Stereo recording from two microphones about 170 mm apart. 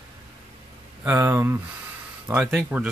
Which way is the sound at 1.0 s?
10° right (ahead or behind).